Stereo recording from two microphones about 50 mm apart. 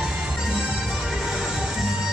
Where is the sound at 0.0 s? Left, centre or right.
Centre.